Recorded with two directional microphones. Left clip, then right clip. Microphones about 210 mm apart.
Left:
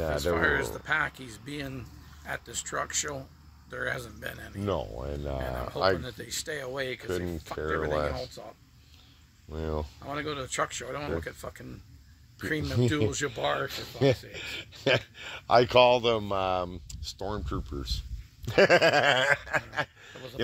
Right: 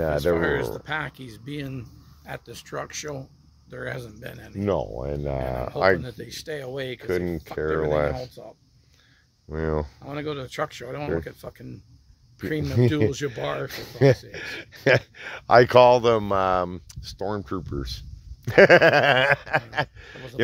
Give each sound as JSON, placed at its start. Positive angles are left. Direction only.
{"t": 0.1, "sound": "speech", "side_deg": -50}
{"t": 4.6, "sound": "speech", "side_deg": -30}
{"t": 5.9, "sound": "speech", "side_deg": -50}
{"t": 7.0, "sound": "speech", "side_deg": -30}
{"t": 7.7, "sound": "speech", "side_deg": -45}
{"t": 8.0, "sound": "speech", "side_deg": -35}
{"t": 9.5, "sound": "speech", "side_deg": -35}
{"t": 10.0, "sound": "speech", "side_deg": -50}
{"t": 12.6, "sound": "speech", "side_deg": -30}
{"t": 13.4, "sound": "speech", "side_deg": -55}
{"t": 13.7, "sound": "speech", "side_deg": -30}